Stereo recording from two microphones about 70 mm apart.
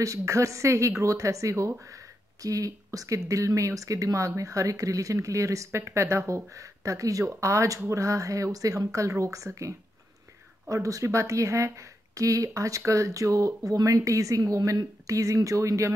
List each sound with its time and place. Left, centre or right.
0.0 s speech: right